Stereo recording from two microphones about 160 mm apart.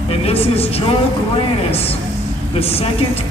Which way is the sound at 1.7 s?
40° left (ahead or behind).